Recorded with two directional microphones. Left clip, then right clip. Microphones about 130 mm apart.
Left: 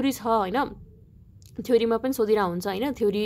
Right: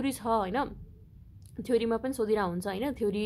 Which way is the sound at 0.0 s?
25° left (ahead or behind).